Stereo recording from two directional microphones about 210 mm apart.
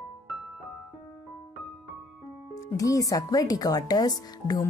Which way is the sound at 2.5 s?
15° left (ahead or behind).